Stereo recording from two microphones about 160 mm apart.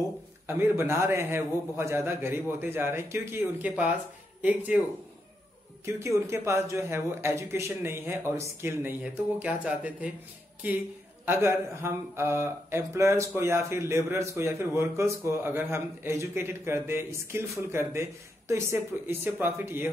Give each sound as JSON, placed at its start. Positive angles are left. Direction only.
{"t": 0.5, "sound": "speech", "side_deg": -15}
{"t": 5.9, "sound": "speech", "side_deg": -20}
{"t": 11.2, "sound": "speech", "side_deg": -15}